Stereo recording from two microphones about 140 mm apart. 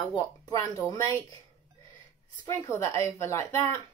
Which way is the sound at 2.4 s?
20° left (ahead or behind).